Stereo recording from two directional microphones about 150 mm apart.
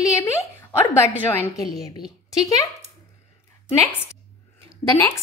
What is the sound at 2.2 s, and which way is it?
Speech, 20° left (ahead or behind).